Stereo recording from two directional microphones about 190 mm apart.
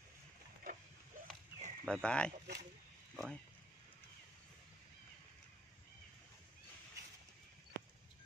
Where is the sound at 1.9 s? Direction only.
5° left (ahead or behind).